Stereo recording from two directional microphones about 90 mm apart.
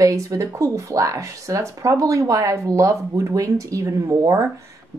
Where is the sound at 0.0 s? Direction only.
40° right (ahead or behind).